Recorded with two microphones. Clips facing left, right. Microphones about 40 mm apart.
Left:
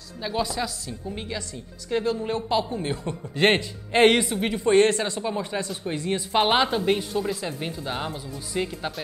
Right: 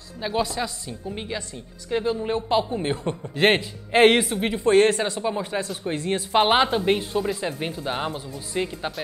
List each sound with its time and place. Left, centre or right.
0.2 s speech: centre
2.8 s a man's voice: right
3.3 s speech: centre
5.9 s a man's voice: right
6.3 s speech: centre